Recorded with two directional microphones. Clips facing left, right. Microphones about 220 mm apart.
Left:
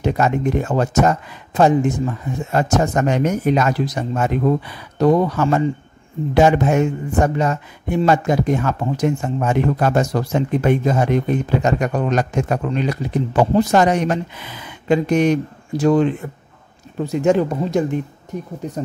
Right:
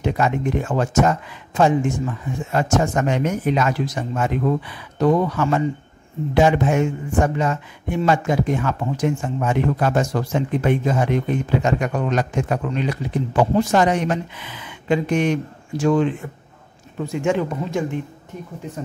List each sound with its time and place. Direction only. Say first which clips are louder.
0.0 s speech: left 3 dB; 40° left (ahead or behind)